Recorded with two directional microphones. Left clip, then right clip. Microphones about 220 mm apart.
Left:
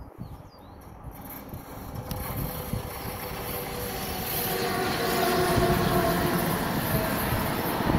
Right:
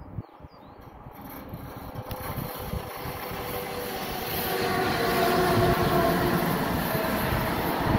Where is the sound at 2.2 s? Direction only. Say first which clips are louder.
Right 1 dB; 40° right (ahead or behind).